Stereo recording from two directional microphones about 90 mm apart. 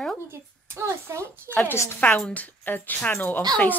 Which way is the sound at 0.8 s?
30° right (ahead or behind).